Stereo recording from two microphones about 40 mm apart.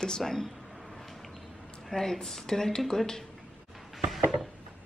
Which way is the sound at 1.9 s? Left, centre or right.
Centre.